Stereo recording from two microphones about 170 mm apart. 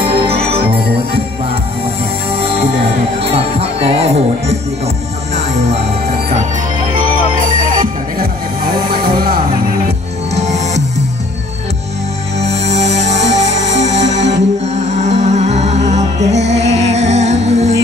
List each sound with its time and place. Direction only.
2.3 s music: 35° right (ahead or behind)
9.0 s music: 60° right (ahead or behind)
10.3 s music: 40° right (ahead or behind)
12.4 s music: 40° right (ahead or behind)